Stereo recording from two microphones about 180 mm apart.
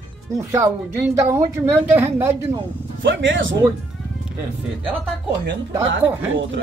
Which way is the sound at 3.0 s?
90° right.